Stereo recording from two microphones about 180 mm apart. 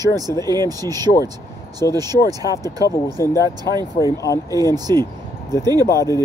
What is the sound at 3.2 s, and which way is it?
Speech, 20° right (ahead or behind).